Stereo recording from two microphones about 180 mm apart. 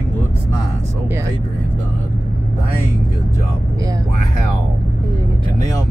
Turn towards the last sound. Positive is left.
turn(degrees=-20)  # may be behind; listen again after turning